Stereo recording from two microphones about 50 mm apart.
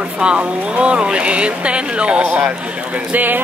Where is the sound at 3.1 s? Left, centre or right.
Right.